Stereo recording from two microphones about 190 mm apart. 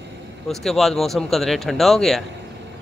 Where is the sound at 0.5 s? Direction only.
Centre (ahead or behind).